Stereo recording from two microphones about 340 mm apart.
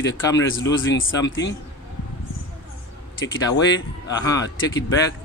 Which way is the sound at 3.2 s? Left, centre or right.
Left.